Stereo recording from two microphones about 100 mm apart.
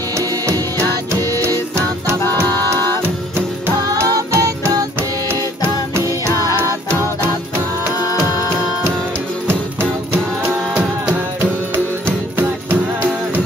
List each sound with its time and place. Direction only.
2.2 s music: 20° left (ahead or behind)
3.9 s music: 35° right (ahead or behind)
8.1 s music: 35° left (ahead or behind)
9.8 s music: 15° right (ahead or behind)
12.4 s music: 20° right (ahead or behind)